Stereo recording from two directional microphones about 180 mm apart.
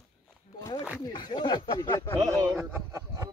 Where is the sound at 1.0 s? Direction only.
25° left (ahead or behind).